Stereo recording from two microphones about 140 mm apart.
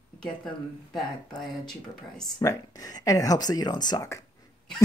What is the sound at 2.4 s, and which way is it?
Speech, 25° left (ahead or behind).